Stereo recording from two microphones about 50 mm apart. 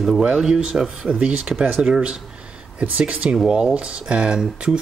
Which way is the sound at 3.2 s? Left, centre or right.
Right.